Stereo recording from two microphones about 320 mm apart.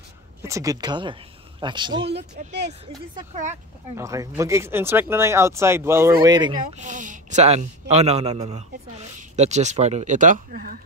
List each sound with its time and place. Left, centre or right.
0.4 s speech: centre
2.0 s a man's voice: right
3.9 s a man's voice: centre; by 10.8 s right